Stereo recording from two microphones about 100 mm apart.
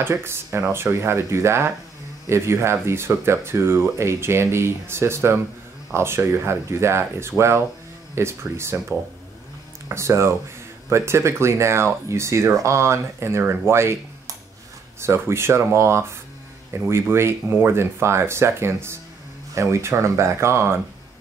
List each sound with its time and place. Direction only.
0.0 s speech: 25° right (ahead or behind)
9.8 s speech: 30° right (ahead or behind)